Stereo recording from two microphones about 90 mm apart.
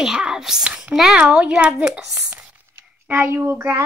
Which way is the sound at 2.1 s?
20° right (ahead or behind).